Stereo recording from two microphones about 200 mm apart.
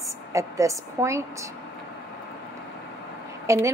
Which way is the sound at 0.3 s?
15° right (ahead or behind).